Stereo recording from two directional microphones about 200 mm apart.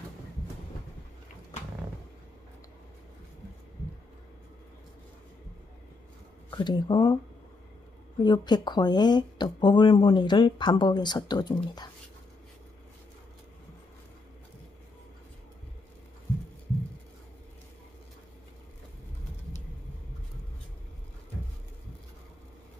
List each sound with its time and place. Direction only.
6.5 s speech: 20° left (ahead or behind)
8.2 s speech: 20° left (ahead or behind)